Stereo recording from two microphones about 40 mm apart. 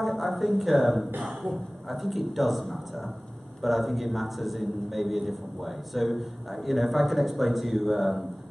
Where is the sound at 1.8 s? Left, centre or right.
Centre.